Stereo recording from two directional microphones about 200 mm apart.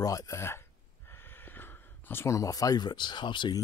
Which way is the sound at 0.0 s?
15° left (ahead or behind).